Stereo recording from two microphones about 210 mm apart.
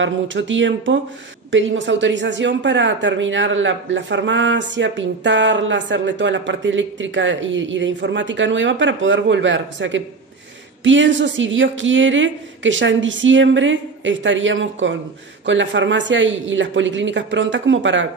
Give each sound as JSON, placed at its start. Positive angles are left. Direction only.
{"t": 0.0, "sound": "speech", "side_deg": -60}